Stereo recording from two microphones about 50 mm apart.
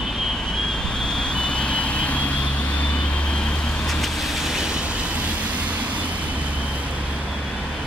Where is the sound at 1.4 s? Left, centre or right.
Left.